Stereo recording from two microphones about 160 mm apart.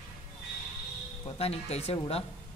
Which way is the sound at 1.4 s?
40° left (ahead or behind).